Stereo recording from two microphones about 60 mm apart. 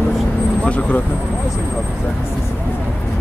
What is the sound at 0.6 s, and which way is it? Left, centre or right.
Vehicle, left.